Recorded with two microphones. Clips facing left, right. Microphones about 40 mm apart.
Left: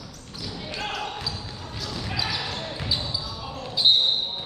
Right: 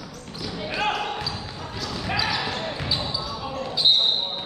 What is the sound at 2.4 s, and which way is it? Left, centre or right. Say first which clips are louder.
Basketball bounce: right 3 dB; right.